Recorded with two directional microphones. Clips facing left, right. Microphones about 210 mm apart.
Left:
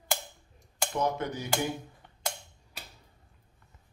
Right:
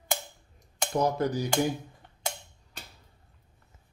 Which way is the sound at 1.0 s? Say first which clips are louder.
Right 4 dB; 35° right (ahead or behind).